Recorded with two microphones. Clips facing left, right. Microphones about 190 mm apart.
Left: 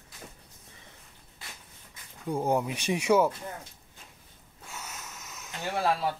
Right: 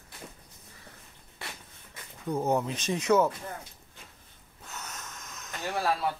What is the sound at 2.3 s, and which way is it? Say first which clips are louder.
Speech: even; 10° left (ahead or behind).